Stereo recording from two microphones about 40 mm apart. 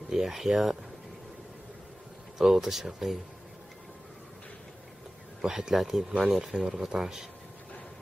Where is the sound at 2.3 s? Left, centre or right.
Centre.